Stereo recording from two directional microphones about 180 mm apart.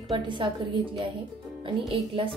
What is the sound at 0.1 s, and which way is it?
A woman's voice, 25° right (ahead or behind).